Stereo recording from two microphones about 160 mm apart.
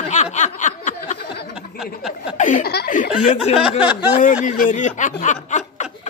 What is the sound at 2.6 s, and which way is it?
Speech, 70° left (ahead or behind).